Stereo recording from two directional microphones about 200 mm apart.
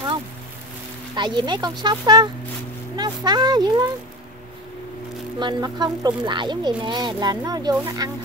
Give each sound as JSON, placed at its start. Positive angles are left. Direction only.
{"t": 1.1, "sound": "speech", "side_deg": -20}
{"t": 5.4, "sound": "speech", "side_deg": -20}